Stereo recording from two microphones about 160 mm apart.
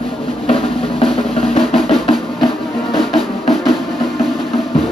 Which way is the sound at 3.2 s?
Centre (ahead or behind).